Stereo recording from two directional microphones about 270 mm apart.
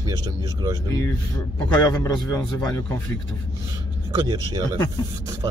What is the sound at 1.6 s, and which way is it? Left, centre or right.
Speech, centre.